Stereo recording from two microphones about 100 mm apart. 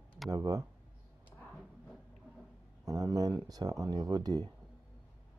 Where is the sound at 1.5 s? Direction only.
Centre (ahead or behind).